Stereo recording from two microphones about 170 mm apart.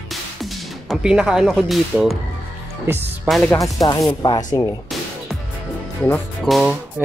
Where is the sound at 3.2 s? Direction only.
Centre (ahead or behind).